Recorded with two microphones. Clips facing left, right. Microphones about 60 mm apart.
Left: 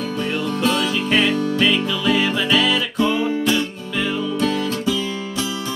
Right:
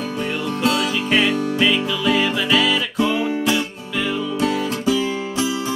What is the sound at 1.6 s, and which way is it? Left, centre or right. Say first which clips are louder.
Music: right 2 dB; centre.